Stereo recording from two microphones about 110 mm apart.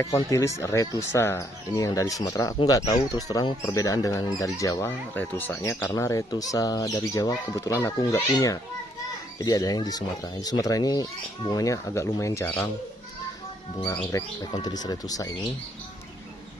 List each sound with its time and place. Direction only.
0.0 s speech: 25° left (ahead or behind)
5.1 s speech: 20° left (ahead or behind)
14.1 s speech: 40° left (ahead or behind)